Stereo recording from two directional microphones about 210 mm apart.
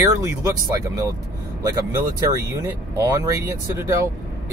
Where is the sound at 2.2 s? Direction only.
15° right (ahead or behind).